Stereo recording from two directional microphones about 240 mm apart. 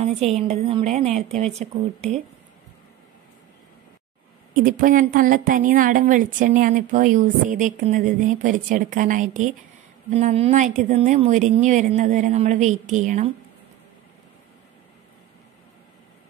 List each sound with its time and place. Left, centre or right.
0.0 s a woman's voice: right
4.6 s a woman's voice: right